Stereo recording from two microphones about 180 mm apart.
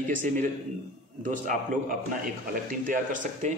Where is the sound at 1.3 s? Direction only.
45° right (ahead or behind).